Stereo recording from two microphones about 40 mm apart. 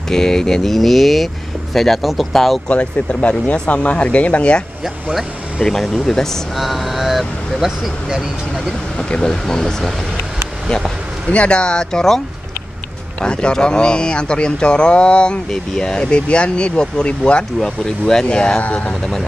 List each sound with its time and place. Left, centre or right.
0.1 s speech: centre
2.7 s speech: left
5.6 s speech: centre
6.5 s speech: centre
9.1 s speech: centre
10.7 s a sound: left
11.3 s speech: left
13.2 s speech: left
17.6 s speech: centre
18.6 s speech: left